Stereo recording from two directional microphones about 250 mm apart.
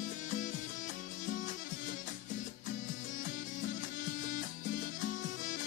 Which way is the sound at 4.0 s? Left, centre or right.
Left.